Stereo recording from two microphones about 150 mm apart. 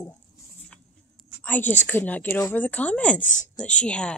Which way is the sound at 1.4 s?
10° left (ahead or behind).